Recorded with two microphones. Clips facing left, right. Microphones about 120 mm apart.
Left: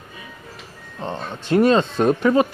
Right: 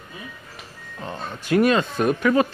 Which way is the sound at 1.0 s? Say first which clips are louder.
Left 3 dB; 25° left (ahead or behind).